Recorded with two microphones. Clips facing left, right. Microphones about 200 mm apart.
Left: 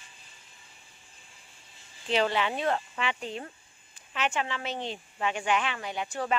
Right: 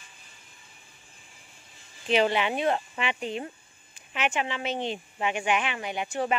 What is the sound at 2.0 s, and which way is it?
Speech, 15° right (ahead or behind).